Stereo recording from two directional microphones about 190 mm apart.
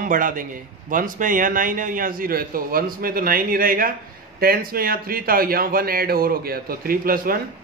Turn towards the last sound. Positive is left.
turn(degrees=-50)  # may be behind; listen again after turning